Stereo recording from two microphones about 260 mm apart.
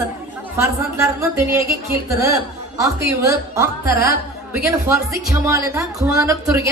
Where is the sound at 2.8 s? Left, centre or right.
Centre.